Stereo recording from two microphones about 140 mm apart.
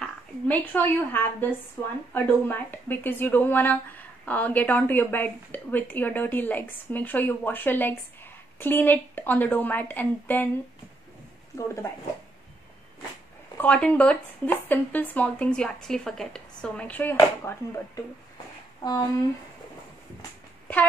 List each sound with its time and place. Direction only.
0.0 s speech: 15° left (ahead or behind)
11.5 s speech: 20° left (ahead or behind)
13.6 s speech: 10° left (ahead or behind)
18.8 s speech: 25° left (ahead or behind)